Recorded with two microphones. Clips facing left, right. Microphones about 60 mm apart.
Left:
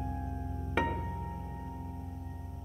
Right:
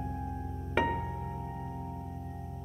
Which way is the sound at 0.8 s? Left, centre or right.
Centre.